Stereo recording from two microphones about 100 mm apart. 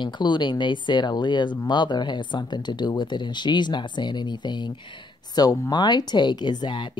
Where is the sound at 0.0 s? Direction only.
50° left (ahead or behind).